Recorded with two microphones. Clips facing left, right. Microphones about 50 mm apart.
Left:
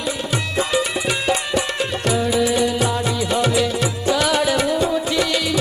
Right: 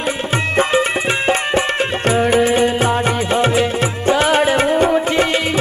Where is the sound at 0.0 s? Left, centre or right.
Right.